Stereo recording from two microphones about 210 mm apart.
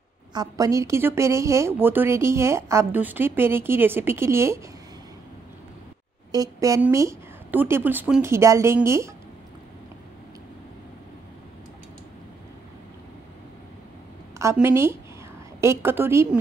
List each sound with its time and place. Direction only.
0.3 s a woman's voice: 15° right (ahead or behind)
6.3 s a woman's voice: 15° right (ahead or behind)
14.4 s a woman's voice: 10° right (ahead or behind)